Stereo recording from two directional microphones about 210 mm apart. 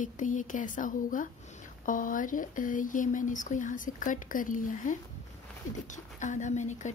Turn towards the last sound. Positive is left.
turn(degrees=35)  # may be behind; listen again after turning